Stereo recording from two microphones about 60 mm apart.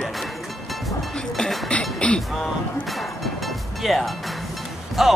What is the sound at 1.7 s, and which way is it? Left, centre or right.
Music, centre.